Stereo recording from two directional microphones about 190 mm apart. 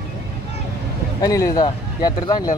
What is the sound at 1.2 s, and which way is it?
Speech, 20° left (ahead or behind).